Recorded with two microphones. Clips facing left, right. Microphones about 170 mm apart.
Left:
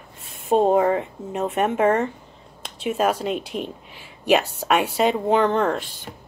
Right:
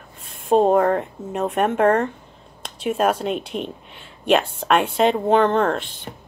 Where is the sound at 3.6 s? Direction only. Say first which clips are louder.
Right 1 dB; 5° left (ahead or behind).